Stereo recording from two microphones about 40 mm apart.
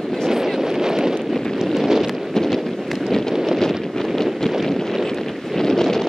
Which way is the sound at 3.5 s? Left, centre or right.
Centre.